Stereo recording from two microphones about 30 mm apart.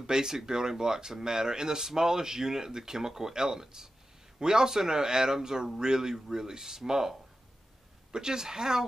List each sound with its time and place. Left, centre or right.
0.0 s speech: right